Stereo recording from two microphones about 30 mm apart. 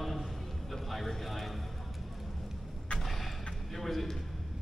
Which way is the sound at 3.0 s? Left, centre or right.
Centre.